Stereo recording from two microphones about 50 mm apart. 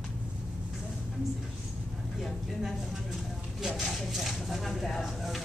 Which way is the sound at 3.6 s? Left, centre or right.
Centre.